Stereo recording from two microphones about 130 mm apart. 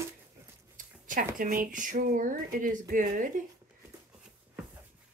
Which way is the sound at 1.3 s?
90° right.